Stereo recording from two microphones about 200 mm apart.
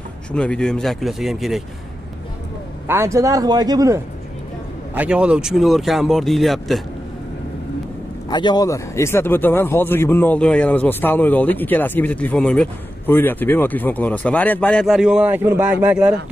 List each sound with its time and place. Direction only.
0.3 s speech: 5° left (ahead or behind)
2.9 s speech: 15° right (ahead or behind)
4.9 s speech: 5° right (ahead or behind)
8.3 s speech: 20° left (ahead or behind); by 16.2 s 5° right (ahead or behind)